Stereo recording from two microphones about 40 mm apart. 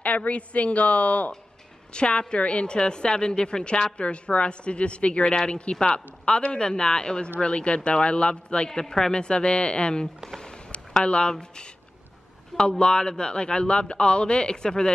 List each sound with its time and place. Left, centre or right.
0.0 s a woman's voice: left
8.6 s speech: centre
10.3 s a sound: left
12.5 s speech: left